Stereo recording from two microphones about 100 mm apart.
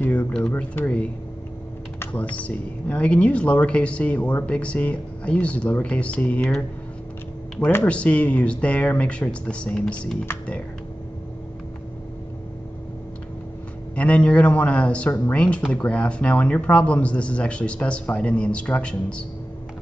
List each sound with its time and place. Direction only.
0.0 s a sound: 20° left (ahead or behind)
0.3 s speech: 10° left (ahead or behind)
7.7 s speech: 15° left (ahead or behind)
13.9 s speech: 10° left (ahead or behind)